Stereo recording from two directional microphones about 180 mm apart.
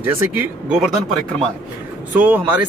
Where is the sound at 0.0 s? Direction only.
10° right (ahead or behind).